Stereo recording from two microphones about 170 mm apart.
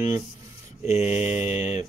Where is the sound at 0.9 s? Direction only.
40° left (ahead or behind).